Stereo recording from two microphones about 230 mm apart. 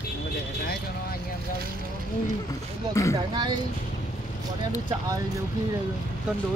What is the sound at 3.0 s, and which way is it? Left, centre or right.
Speech, centre.